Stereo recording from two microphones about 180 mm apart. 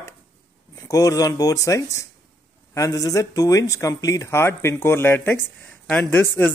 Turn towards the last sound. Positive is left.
turn(degrees=10)  # may be behind; listen again after turning